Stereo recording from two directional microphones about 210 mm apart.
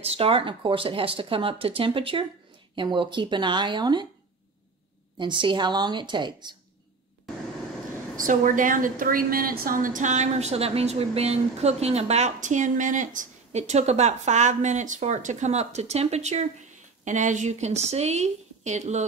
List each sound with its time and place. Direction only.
0.0 s speech: 25° right (ahead or behind)
5.2 s speech: 25° right (ahead or behind)
8.2 s a woman's voice: 40° right (ahead or behind)